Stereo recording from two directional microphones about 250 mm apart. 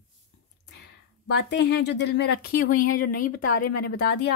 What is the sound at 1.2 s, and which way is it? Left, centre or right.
Speech, left.